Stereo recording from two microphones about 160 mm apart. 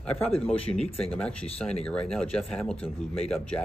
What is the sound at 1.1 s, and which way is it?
Speech, 5° left (ahead or behind).